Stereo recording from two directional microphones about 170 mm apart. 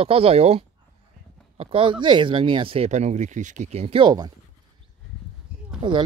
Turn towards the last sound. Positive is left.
turn(degrees=-30)  # may be behind; listen again after turning